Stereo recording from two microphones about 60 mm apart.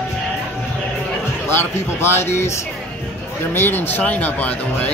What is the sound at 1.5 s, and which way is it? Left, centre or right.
Speech, left.